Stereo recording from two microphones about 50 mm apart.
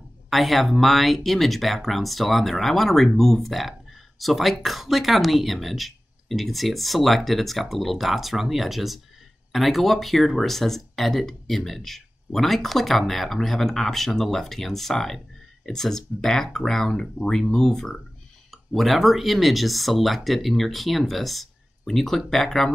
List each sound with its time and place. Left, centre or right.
0.3 s speech: centre
18.5 s speech: centre